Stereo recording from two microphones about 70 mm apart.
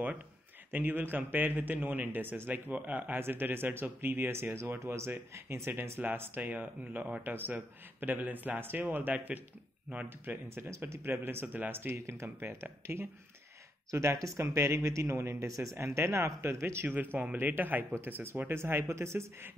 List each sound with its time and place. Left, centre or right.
0.7 s speech: right
16.8 s speech: right